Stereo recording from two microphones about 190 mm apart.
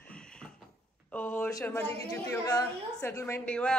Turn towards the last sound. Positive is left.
turn(degrees=5)  # may be behind; listen again after turning